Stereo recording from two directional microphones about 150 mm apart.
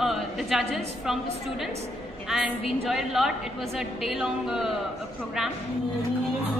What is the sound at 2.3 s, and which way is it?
A woman's voice, 5° right (ahead or behind).